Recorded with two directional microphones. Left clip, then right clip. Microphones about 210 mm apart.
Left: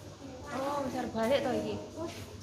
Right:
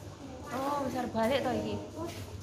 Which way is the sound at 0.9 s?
50° right (ahead or behind).